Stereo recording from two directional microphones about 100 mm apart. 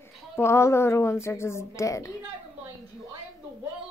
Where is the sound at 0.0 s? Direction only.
25° left (ahead or behind).